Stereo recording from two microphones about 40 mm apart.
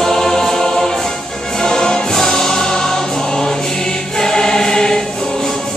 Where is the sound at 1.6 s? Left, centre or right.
Centre.